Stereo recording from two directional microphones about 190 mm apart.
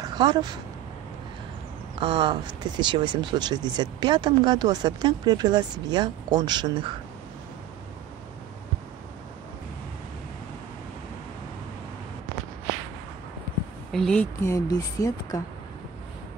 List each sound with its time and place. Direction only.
0.0 s speech: 25° right (ahead or behind)
2.0 s speech: 25° right (ahead or behind)
13.9 s a woman's voice: 5° left (ahead or behind)